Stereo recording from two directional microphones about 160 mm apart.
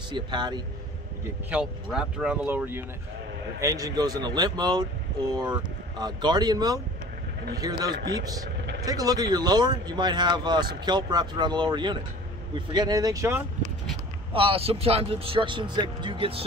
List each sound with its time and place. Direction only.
0.1 s speech: 30° right (ahead or behind)
1.5 s speech: 5° right (ahead or behind)
14.3 s speech: 35° right (ahead or behind)